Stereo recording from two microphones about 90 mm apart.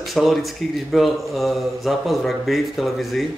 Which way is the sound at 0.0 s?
Centre (ahead or behind).